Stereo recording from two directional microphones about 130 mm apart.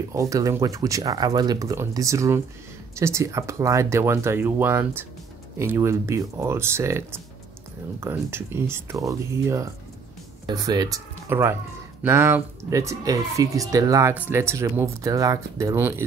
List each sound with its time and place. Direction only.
0.1 s speech: 25° right (ahead or behind)
11.2 s speech: 20° right (ahead or behind)